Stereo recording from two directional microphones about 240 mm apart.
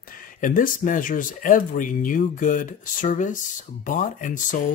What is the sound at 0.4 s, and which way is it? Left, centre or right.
Speech, left.